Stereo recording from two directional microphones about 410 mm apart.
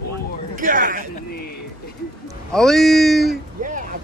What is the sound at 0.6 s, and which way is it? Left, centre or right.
Speech, centre.